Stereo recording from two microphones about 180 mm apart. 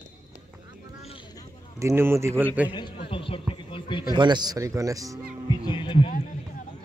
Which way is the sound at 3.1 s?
30° left (ahead or behind).